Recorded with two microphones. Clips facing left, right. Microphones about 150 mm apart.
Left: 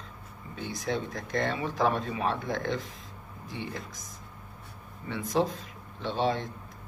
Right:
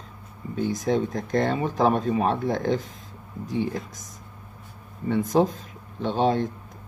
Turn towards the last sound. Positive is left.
turn(degrees=-45)  # may be behind; listen again after turning